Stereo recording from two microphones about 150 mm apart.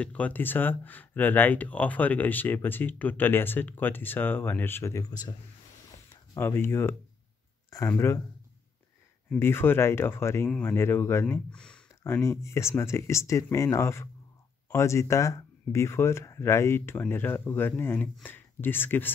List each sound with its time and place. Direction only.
0.0 s speech: 10° left (ahead or behind)
6.3 s speech: 15° left (ahead or behind)
9.3 s speech: 15° left (ahead or behind)
12.0 s speech: 20° left (ahead or behind)